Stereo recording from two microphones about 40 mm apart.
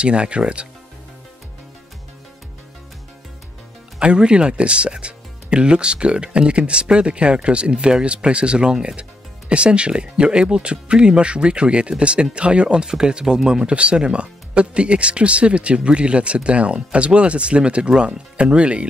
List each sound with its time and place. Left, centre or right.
0.0 s speech: right
4.0 s speech: right